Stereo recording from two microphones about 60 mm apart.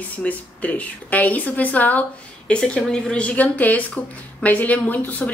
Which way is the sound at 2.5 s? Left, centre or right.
Centre.